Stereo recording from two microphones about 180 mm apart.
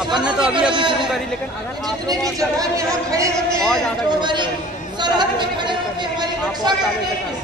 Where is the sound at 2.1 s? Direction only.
20° right (ahead or behind).